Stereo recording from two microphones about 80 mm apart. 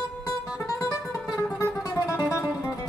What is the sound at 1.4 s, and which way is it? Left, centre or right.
Music, left.